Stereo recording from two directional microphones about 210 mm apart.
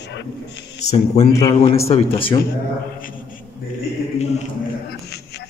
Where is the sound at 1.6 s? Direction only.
30° left (ahead or behind).